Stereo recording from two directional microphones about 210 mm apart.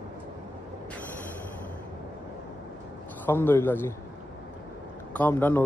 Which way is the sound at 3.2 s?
10° left (ahead or behind).